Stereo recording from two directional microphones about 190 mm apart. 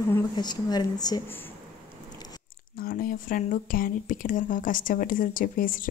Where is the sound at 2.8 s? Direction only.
50° left (ahead or behind).